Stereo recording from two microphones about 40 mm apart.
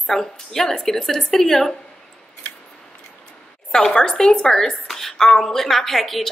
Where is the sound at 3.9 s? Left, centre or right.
Left; by 6.2 s centre.